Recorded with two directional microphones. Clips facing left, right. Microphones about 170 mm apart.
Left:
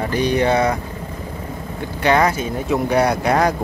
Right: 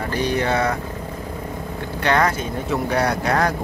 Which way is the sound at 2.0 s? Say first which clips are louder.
Left 3 dB; 10° left (ahead or behind).